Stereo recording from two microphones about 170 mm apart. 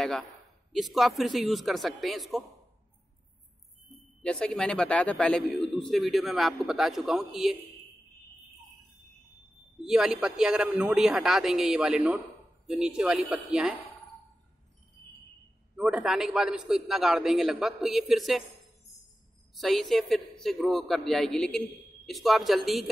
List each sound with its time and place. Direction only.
0.7 s a man's voice: centre (ahead or behind)
4.2 s a man's voice: 5° left (ahead or behind)
9.8 s a man's voice: 5° right (ahead or behind)
15.7 s a man's voice: 5° right (ahead or behind)
19.5 s a man's voice: centre (ahead or behind)